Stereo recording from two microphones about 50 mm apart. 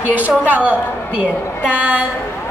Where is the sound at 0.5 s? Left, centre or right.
Right.